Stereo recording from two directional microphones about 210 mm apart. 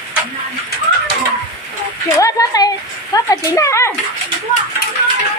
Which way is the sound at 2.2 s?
15° left (ahead or behind).